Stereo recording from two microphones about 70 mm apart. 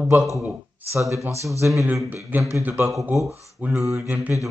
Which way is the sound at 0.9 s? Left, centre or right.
Right.